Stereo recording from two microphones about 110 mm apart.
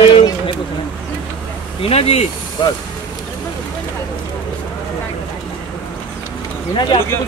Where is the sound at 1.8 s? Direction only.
65° left (ahead or behind).